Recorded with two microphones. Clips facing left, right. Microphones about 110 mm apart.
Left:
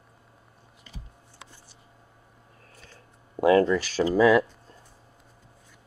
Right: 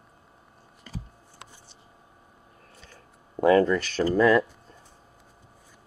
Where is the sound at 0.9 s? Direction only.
40° right (ahead or behind).